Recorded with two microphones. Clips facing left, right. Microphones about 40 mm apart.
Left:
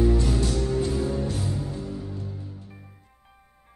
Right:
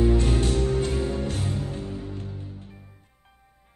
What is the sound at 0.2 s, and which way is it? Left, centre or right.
Music, right.